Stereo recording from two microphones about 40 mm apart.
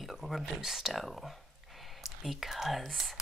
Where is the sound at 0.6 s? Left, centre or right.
Centre.